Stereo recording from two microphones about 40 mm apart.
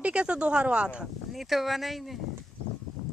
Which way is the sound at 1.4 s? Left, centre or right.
Centre.